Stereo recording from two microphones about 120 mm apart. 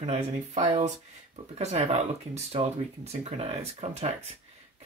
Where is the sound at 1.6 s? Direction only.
65° right (ahead or behind).